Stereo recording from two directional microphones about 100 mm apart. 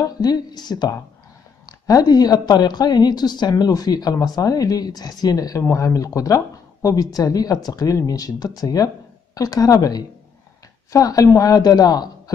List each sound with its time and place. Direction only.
0.0 s speech: 40° left (ahead or behind)